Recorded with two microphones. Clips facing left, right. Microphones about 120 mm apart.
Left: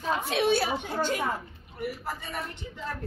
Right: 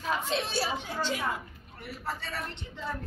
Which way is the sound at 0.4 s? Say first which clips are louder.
Left 8 dB; 55° left (ahead or behind).